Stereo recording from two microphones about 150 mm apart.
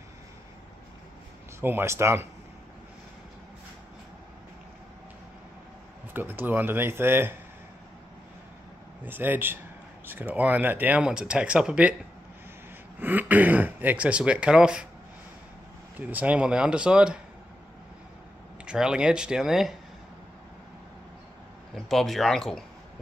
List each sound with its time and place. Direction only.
1.6 s speech: 15° right (ahead or behind)
6.1 s speech: 15° right (ahead or behind)
9.0 s speech: 15° right (ahead or behind)
13.0 s speech: 10° right (ahead or behind)
16.0 s speech: 10° right (ahead or behind)
18.7 s speech: 5° right (ahead or behind)
21.8 s speech: centre (ahead or behind)